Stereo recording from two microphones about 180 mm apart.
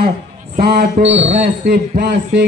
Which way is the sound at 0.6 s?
60° right (ahead or behind).